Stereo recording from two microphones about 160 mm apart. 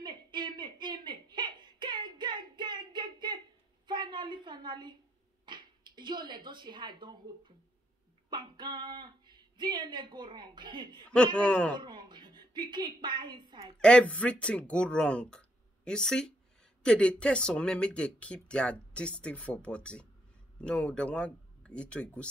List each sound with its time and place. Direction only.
0.0 s whimper: 30° right (ahead or behind)
3.8 s a sound: 30° right (ahead or behind)
5.4 s speech: 30° right (ahead or behind)
11.3 s speech: 5° left (ahead or behind)
11.7 s a sound: 30° right (ahead or behind)
12.7 s speech: 30° right (ahead or behind)
13.7 s speech: 5° left (ahead or behind)